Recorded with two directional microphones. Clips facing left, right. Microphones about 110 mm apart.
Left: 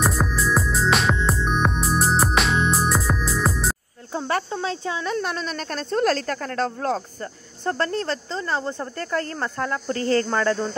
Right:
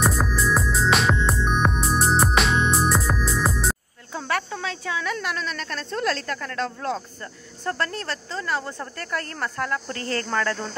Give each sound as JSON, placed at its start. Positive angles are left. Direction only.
{"t": 0.0, "sound": "music", "side_deg": 0}
{"t": 4.3, "sound": "speech", "side_deg": 30}
{"t": 7.2, "sound": "speech", "side_deg": 30}